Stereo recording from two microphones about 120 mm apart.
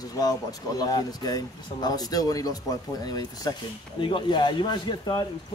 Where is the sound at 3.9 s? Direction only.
45° left (ahead or behind).